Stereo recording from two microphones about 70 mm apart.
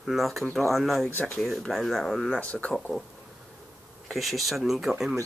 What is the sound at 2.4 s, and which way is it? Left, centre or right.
Speech, centre.